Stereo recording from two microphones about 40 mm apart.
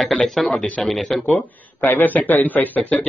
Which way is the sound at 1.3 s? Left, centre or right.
Left.